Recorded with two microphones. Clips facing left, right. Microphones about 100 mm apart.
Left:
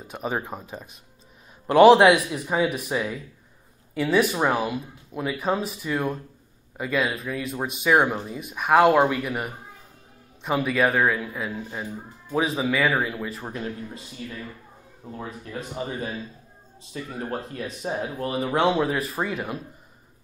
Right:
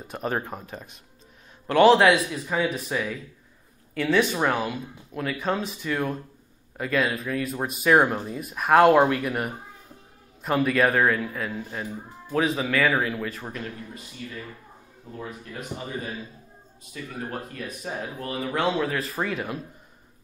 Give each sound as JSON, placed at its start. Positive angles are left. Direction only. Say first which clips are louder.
{"t": 0.1, "sound": "speech", "louder": "even", "side_deg": 5}
{"t": 1.7, "sound": "speech", "louder": "left 3 dB", "side_deg": 20}
{"t": 13.5, "sound": "speech", "louder": "left 3 dB", "side_deg": 20}
{"t": 16.9, "sound": "speech", "louder": "left 3 dB", "side_deg": 30}
{"t": 19.3, "sound": "speech", "louder": "even", "side_deg": 0}